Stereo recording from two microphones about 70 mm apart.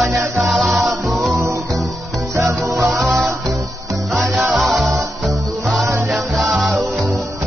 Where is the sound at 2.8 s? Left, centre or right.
Centre.